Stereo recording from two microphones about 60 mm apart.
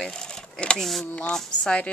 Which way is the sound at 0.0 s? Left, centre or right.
Centre.